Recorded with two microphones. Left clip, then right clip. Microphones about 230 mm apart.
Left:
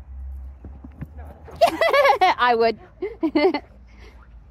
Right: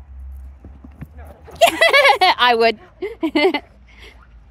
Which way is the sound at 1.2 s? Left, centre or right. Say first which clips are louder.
Right 4 dB; centre.